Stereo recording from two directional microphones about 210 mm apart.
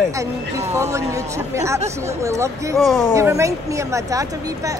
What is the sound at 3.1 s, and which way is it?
A woman's voice, 15° right (ahead or behind).